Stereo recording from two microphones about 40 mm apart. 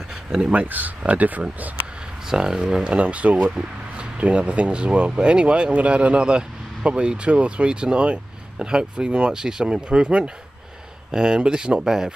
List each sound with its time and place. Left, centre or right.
0.5 s speech: right
2.2 s speech: centre
2.8 s speech: right
3.3 s speech: right